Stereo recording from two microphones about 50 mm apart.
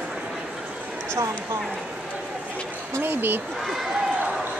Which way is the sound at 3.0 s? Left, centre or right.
Right.